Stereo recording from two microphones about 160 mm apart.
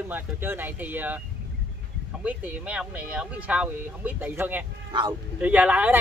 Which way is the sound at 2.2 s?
10° right (ahead or behind).